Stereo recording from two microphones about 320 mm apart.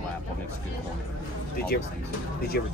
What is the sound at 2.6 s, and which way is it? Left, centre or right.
Speech, left.